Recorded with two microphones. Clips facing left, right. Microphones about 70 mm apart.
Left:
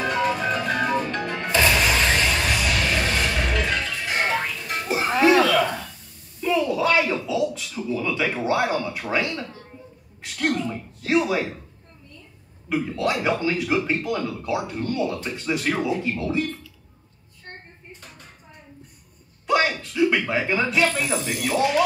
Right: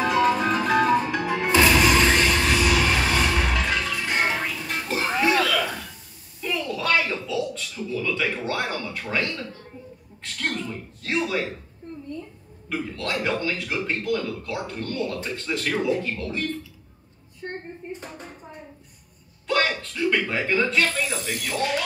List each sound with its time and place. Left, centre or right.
0.0 s music: centre
4.8 s music: centre
6.4 s a sound: centre
10.2 s a man's voice: centre
12.6 s a man's voice: centre
17.4 s a sound: right
19.4 s a man's voice: centre